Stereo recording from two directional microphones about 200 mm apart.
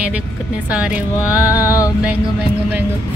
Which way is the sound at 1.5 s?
15° left (ahead or behind).